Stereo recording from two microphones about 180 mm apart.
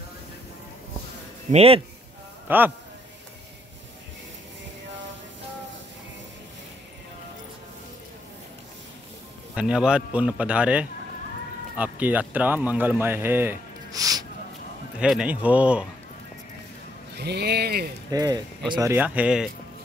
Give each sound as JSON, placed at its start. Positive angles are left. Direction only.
{"t": 1.5, "sound": "a man's voice", "side_deg": -35}
{"t": 2.4, "sound": "a man's voice", "side_deg": -10}
{"t": 9.6, "sound": "a man's voice", "side_deg": -5}
{"t": 15.0, "sound": "a man's voice", "side_deg": -5}
{"t": 17.1, "sound": "speech", "side_deg": -65}
{"t": 18.1, "sound": "speech", "side_deg": -20}
{"t": 18.9, "sound": "a man's voice", "side_deg": -5}